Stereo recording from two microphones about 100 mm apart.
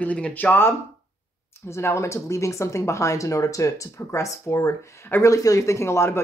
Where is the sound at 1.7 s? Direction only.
25° left (ahead or behind).